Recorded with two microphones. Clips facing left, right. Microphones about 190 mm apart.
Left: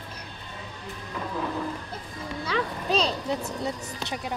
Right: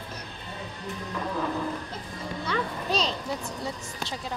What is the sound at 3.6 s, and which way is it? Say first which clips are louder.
Speech: left 3 dB; 20° left (ahead or behind).